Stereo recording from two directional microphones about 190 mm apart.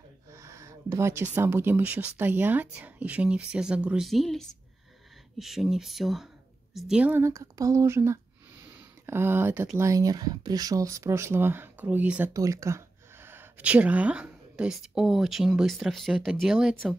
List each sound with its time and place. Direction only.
0.3 s speech: 15° right (ahead or behind)